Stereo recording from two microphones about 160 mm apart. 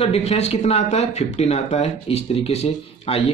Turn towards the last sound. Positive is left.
turn(degrees=40)  # may be behind; listen again after turning